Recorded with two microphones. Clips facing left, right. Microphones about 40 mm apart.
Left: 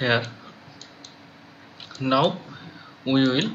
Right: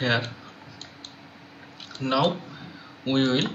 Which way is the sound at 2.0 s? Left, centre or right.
Centre.